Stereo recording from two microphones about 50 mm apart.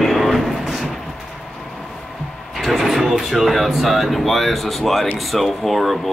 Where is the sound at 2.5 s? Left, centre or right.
Centre.